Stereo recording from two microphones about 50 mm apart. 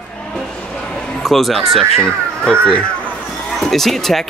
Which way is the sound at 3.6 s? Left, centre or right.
Centre.